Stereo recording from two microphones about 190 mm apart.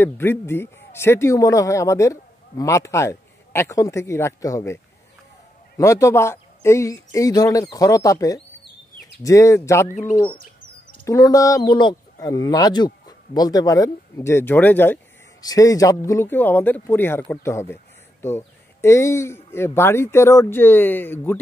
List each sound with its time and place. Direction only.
0.0 s speech: 10° left (ahead or behind)
5.8 s speech: 15° left (ahead or behind)
9.8 s speech: 40° left (ahead or behind)
11.1 s speech: 20° left (ahead or behind)